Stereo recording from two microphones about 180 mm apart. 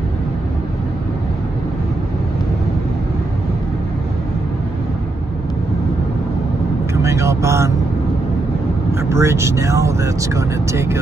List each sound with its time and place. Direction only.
7.0 s vehicle: 15° right (ahead or behind)
8.9 s speech: 15° right (ahead or behind)